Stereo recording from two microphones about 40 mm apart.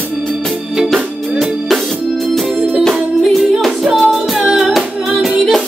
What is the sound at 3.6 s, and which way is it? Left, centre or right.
Music, centre.